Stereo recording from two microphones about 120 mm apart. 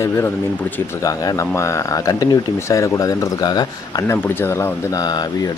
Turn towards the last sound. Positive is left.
turn(degrees=20)  # may be behind; listen again after turning